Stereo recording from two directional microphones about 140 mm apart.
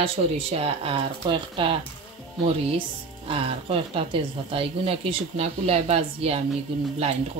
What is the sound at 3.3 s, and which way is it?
Speech, 40° right (ahead or behind).